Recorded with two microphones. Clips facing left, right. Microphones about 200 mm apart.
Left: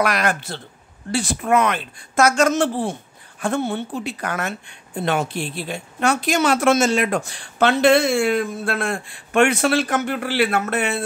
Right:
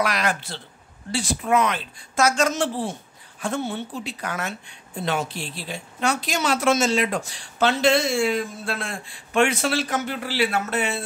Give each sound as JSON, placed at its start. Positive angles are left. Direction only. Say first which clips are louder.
{"t": 0.0, "sound": "speech", "louder": "left 3 dB", "side_deg": 55}